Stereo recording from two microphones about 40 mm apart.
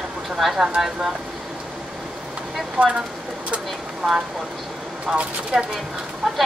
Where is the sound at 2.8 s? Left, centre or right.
Right.